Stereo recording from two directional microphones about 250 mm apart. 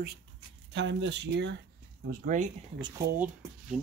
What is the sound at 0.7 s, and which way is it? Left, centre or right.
Speech, right.